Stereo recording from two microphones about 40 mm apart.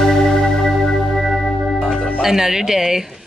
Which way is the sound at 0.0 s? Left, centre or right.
Centre.